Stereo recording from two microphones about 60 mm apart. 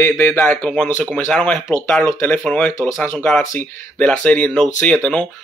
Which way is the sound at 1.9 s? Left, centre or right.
Left.